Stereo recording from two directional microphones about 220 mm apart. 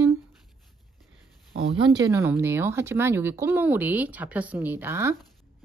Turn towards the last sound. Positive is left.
turn(degrees=-10)  # may be behind; listen again after turning